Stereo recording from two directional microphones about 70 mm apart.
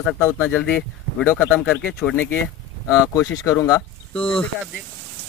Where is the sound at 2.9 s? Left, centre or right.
Left.